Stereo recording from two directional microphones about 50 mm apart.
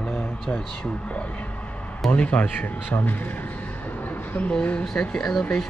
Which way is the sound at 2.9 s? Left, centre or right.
Left.